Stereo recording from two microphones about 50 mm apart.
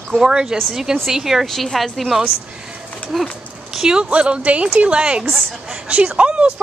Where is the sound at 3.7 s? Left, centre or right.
Centre.